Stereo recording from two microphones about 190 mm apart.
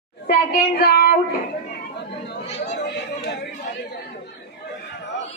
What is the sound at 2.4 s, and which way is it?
Speech, 35° left (ahead or behind).